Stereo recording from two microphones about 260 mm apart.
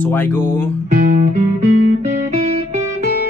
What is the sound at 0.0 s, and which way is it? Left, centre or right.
Speech, centre.